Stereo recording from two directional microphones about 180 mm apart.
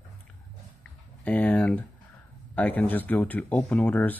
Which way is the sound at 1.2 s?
10° left (ahead or behind).